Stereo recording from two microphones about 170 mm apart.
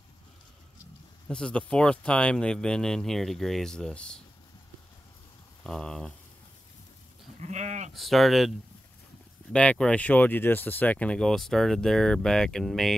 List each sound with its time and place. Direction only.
1.3 s speech: 5° left (ahead or behind)
5.6 s speech: 5° left (ahead or behind)
7.3 s goat: 40° right (ahead or behind)
7.9 s speech: centre (ahead or behind)